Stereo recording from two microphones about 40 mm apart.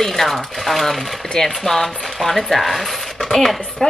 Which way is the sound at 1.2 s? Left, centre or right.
Centre.